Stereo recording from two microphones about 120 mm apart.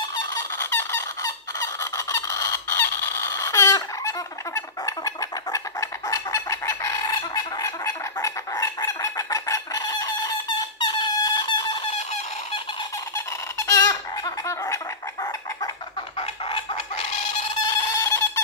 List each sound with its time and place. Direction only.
0.3 s fowl: 20° left (ahead or behind)
4.6 s chicken: 30° left (ahead or behind)
10.8 s squeak: 40° left (ahead or behind)
13.6 s a sound: 25° left (ahead or behind)
14.4 s gargling: 25° left (ahead or behind)
16.2 s chicken: 50° left (ahead or behind)
17.6 s a sound: 25° left (ahead or behind)